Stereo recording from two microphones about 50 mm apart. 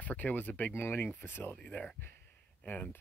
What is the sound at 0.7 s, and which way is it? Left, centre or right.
Speech, left.